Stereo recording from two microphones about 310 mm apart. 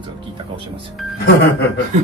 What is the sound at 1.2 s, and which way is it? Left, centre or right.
Speech, left.